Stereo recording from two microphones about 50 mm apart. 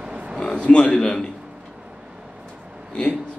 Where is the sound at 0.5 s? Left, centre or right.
Left.